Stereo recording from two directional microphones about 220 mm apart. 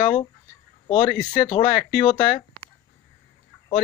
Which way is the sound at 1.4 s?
35° left (ahead or behind).